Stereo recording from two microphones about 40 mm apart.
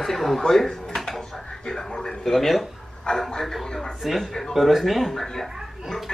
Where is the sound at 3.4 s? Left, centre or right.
Centre.